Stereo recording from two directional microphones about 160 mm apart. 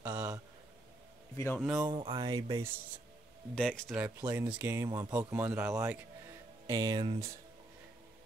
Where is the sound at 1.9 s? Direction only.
30° right (ahead or behind).